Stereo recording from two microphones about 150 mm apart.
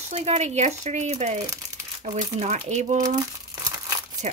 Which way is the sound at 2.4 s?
50° right (ahead or behind).